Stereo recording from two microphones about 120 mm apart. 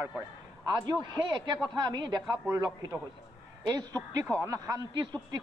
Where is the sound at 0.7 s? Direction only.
35° right (ahead or behind).